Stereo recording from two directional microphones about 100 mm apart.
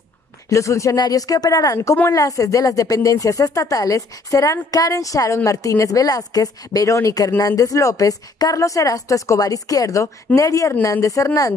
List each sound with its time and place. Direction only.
0.5 s speech: 30° left (ahead or behind)